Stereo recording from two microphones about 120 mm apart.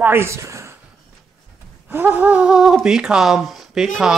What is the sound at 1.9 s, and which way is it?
Speech, 15° right (ahead or behind).